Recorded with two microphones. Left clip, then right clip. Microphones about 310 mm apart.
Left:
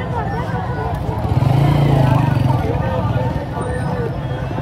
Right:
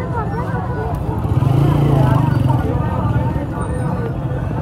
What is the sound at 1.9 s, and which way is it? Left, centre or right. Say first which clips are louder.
Vehicle: even; left.